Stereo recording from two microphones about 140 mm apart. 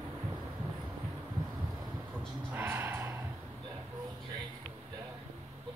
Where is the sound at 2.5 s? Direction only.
15° right (ahead or behind).